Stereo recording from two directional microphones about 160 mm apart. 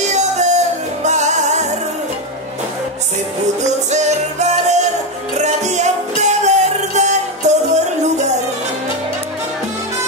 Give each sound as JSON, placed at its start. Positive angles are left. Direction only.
{"t": 0.0, "sound": "music", "side_deg": -45}
{"t": 3.9, "sound": "music", "side_deg": -45}